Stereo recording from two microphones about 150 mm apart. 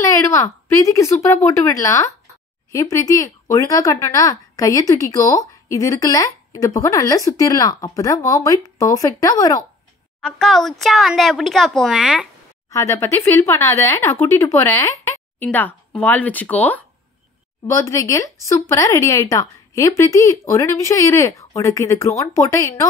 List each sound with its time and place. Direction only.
0.0 s speech: 20° left (ahead or behind)
10.2 s speech: centre (ahead or behind)
12.6 s speech: 20° left (ahead or behind)
17.6 s speech: 20° left (ahead or behind)